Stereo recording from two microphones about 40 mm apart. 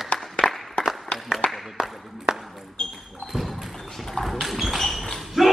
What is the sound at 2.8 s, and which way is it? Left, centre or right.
Basketball bounce, left.